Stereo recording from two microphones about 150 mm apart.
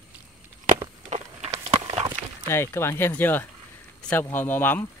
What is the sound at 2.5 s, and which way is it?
Speech, 15° left (ahead or behind).